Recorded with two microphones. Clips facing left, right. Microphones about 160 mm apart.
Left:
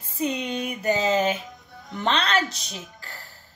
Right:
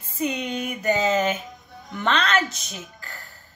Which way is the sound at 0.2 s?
30° left (ahead or behind).